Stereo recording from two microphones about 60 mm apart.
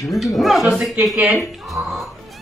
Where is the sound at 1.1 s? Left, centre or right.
Right.